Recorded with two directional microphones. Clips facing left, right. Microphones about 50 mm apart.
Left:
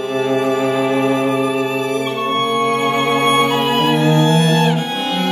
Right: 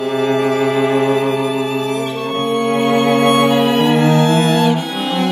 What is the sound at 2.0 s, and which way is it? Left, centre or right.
Music, left.